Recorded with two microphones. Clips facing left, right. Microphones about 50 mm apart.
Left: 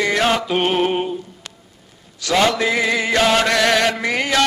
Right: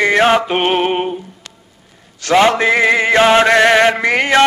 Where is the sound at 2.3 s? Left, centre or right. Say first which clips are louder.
Right 5 dB; right.